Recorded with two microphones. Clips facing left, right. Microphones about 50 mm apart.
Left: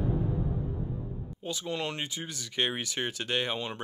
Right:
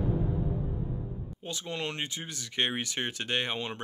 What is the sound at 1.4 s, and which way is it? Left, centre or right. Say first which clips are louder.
Speech: left 2 dB; centre.